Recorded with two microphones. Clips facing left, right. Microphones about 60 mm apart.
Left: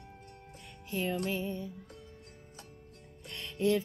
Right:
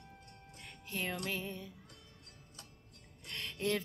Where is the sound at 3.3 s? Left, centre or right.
Right.